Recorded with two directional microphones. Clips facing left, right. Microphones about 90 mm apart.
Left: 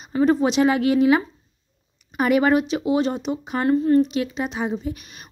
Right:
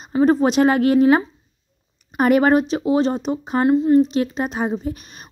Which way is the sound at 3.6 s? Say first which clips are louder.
Right 3 dB; 20° right (ahead or behind).